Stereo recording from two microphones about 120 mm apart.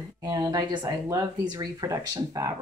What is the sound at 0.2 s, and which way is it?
Speech, 35° right (ahead or behind).